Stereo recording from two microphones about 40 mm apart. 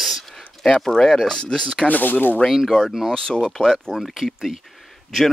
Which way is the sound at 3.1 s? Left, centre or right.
Centre.